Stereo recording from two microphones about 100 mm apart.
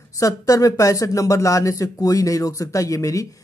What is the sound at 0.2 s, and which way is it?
Speech, 35° left (ahead or behind).